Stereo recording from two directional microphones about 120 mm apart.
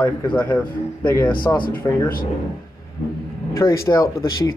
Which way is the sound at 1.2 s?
40° left (ahead or behind).